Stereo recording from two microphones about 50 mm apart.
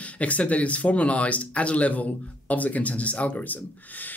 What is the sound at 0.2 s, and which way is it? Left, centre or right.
Speech, left.